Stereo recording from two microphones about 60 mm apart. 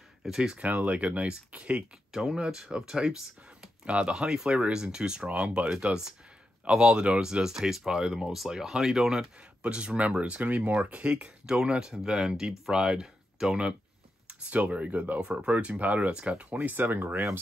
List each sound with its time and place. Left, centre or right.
0.2 s speech: centre
0.6 s speech: right
16.5 s speech: right